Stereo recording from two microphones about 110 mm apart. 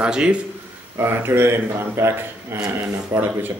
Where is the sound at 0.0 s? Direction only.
10° right (ahead or behind).